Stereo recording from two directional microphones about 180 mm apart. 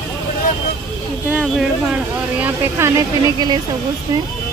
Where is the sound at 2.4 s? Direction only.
15° right (ahead or behind).